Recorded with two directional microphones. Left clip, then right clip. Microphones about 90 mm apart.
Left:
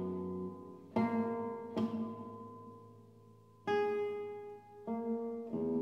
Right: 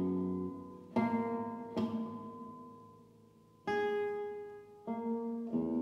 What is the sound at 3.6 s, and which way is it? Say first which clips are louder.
Keyboard: even; 5° right (ahead or behind).